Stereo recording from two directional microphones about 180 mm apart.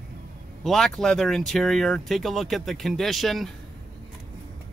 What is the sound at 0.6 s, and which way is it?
Speech, centre (ahead or behind).